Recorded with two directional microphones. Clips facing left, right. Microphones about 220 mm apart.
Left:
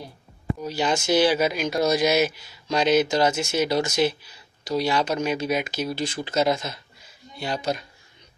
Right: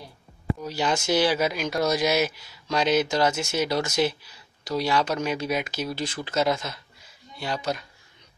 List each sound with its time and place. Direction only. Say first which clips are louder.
0.6 s speech: left 3 dB; 15° left (ahead or behind)